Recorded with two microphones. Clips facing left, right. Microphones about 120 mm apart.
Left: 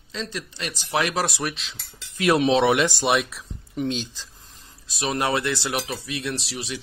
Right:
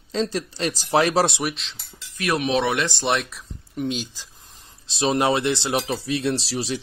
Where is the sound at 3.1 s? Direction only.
Centre (ahead or behind).